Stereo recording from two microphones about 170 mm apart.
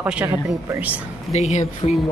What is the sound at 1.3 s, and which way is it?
Speech, 40° left (ahead or behind).